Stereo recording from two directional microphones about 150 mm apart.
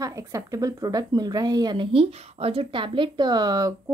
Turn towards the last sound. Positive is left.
turn(degrees=-25)  # may be behind; listen again after turning